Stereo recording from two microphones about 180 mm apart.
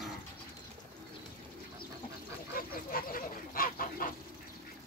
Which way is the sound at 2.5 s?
50° left (ahead or behind).